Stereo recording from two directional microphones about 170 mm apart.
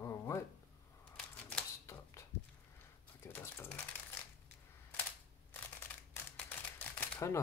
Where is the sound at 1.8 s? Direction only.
15° left (ahead or behind).